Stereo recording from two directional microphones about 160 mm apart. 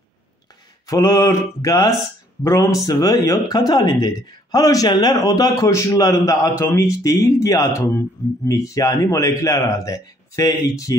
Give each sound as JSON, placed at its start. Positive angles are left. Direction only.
{"t": 0.8, "sound": "speech", "side_deg": 20}